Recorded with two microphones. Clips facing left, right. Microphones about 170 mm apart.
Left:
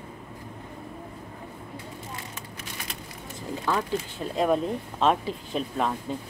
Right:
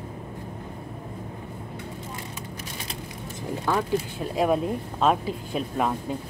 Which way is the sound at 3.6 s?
10° right (ahead or behind).